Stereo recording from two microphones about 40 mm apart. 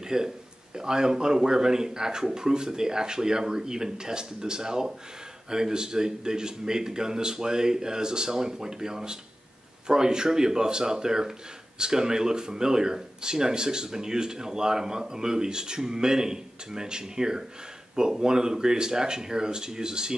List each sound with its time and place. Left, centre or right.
0.0 s speech: centre